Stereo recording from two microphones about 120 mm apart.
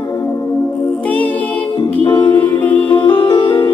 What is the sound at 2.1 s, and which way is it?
Music, 40° left (ahead or behind).